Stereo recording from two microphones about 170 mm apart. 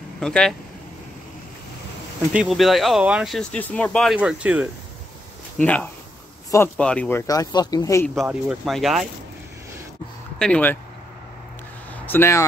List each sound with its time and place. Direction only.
0.2 s speech: 5° left (ahead or behind)
2.3 s speech: centre (ahead or behind)
5.6 s speech: 10° left (ahead or behind)
8.1 s speech: 5° right (ahead or behind)
10.4 s speech: 10° left (ahead or behind)
12.1 s speech: 15° left (ahead or behind)